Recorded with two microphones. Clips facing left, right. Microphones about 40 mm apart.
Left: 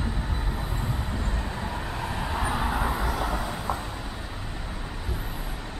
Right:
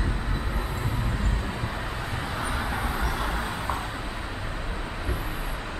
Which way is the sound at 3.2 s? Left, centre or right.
Centre.